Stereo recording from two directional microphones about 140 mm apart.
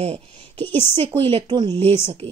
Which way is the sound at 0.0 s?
45° right (ahead or behind).